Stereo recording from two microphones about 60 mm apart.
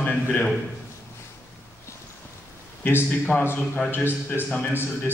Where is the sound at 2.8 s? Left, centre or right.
Left.